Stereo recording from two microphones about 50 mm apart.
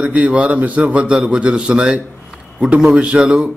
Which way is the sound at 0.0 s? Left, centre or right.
Right.